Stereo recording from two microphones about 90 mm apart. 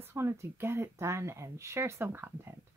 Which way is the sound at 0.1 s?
30° right (ahead or behind).